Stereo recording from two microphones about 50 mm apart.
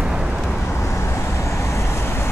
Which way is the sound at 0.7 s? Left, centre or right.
Left.